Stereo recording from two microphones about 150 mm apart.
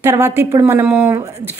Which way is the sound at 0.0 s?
15° right (ahead or behind).